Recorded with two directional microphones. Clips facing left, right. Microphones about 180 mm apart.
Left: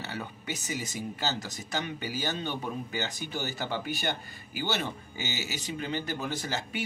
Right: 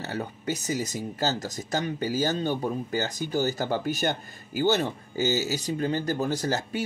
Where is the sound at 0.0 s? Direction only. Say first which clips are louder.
Right 6 dB; 40° right (ahead or behind).